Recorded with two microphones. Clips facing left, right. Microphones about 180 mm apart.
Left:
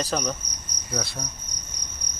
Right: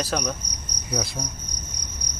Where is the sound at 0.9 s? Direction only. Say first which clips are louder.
Right 2 dB; 15° right (ahead or behind).